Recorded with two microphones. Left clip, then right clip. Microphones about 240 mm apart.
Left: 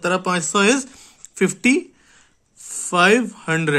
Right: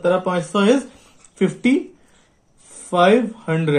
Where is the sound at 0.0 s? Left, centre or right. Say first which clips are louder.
Right 2 dB; left.